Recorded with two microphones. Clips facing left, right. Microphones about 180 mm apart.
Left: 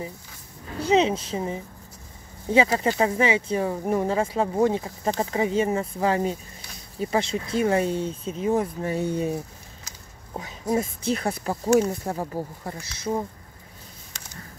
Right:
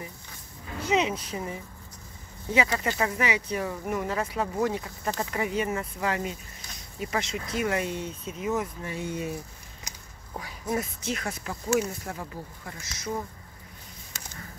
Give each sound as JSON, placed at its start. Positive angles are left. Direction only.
{"t": 0.8, "sound": "speech", "side_deg": 30}
{"t": 10.3, "sound": "speech", "side_deg": 20}